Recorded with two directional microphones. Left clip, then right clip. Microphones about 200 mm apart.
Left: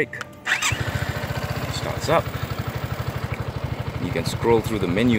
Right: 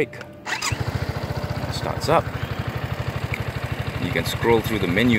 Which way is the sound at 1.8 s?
10° right (ahead or behind).